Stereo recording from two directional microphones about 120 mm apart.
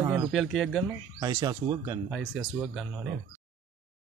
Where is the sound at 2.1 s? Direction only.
Centre (ahead or behind).